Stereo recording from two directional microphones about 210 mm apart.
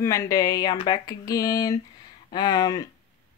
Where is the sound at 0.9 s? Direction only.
15° left (ahead or behind).